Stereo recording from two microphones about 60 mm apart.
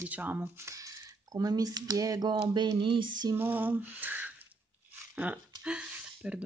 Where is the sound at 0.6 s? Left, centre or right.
Right.